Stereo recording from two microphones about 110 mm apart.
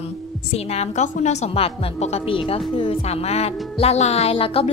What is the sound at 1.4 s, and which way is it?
A woman's voice, 60° left (ahead or behind).